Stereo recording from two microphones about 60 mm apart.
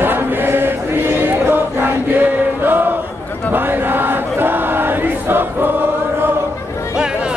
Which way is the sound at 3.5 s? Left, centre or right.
Right.